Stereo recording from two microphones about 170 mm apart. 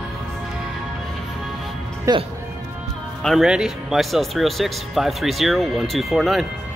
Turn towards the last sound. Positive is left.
turn(degrees=0)  # may be behind; listen again after turning